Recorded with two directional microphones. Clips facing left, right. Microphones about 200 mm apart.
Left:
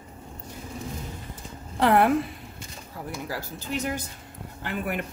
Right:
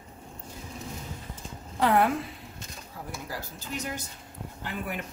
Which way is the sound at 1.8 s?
65° left (ahead or behind).